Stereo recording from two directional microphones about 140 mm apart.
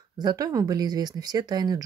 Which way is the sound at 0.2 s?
30° right (ahead or behind).